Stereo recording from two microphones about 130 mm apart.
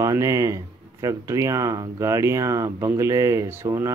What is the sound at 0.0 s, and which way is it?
Speech, 25° right (ahead or behind).